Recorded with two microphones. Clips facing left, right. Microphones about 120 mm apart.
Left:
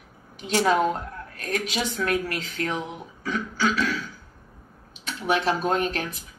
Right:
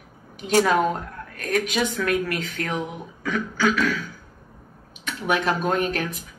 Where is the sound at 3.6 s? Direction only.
45° right (ahead or behind).